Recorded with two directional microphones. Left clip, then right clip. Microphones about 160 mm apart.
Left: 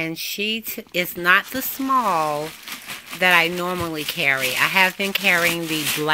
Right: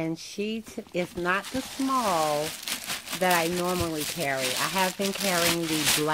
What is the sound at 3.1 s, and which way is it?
Speech, 10° left (ahead or behind).